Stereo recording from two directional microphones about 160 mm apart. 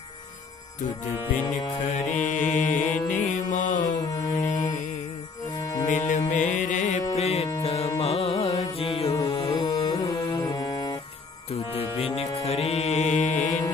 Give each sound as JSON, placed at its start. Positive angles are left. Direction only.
{"t": 1.8, "sound": "mantra", "side_deg": 50}
{"t": 4.0, "sound": "mantra", "side_deg": 20}
{"t": 4.3, "sound": "mantra", "side_deg": 45}
{"t": 5.6, "sound": "music", "side_deg": 20}
{"t": 6.0, "sound": "music", "side_deg": 50}
{"t": 8.0, "sound": "carnatic music", "side_deg": 40}
{"t": 9.2, "sound": "music", "side_deg": 35}
{"t": 11.5, "sound": "music", "side_deg": 35}
{"t": 12.4, "sound": "mantra", "side_deg": 45}
{"t": 13.3, "sound": "mantra", "side_deg": 10}